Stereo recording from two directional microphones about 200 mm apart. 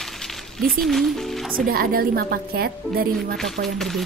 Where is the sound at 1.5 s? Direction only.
45° right (ahead or behind).